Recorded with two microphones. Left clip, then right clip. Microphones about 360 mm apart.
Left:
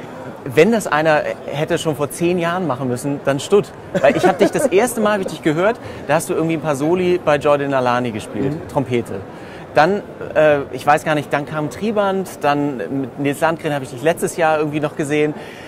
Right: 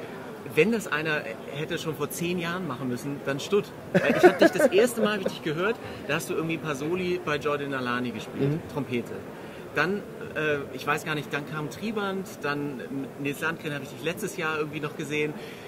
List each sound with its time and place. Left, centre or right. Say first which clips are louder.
0.6 s speech: left 11 dB; left
9.8 s speech: left 13 dB; left